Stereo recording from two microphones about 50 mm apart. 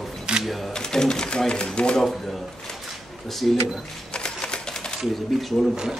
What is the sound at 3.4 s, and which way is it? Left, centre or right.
Speech, centre.